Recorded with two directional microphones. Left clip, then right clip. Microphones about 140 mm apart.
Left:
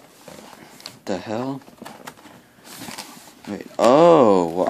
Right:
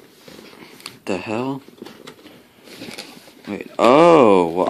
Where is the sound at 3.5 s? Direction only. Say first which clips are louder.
Right 2 dB; 10° left (ahead or behind).